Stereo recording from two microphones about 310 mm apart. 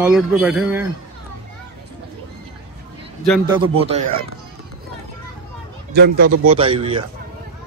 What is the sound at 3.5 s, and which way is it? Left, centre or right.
Speech, centre.